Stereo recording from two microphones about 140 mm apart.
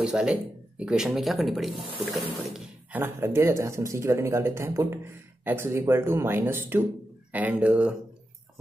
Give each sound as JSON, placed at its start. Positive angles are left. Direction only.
{"t": 0.0, "sound": "speech", "side_deg": -5}
{"t": 2.9, "sound": "speech", "side_deg": -15}